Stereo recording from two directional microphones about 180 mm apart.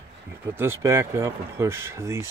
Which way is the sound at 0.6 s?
15° right (ahead or behind).